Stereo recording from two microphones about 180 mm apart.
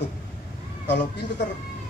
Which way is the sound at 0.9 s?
75° left (ahead or behind).